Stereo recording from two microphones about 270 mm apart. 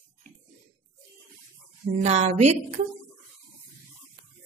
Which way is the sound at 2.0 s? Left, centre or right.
Right.